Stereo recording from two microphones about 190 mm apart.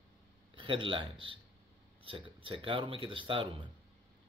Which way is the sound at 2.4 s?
25° right (ahead or behind).